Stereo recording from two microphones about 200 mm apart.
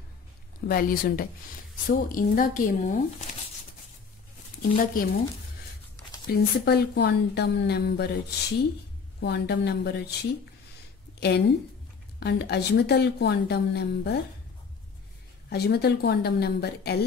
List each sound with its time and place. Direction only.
0.7 s a woman's voice: 45° left (ahead or behind)
4.6 s a woman's voice: 45° left (ahead or behind)
6.2 s a woman's voice: 55° left (ahead or behind)
9.2 s a woman's voice: 55° left (ahead or behind)
11.1 s a woman's voice: 55° left (ahead or behind)
15.5 s a woman's voice: 55° left (ahead or behind)